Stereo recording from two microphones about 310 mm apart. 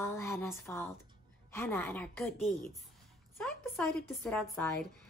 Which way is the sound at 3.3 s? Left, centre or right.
Centre.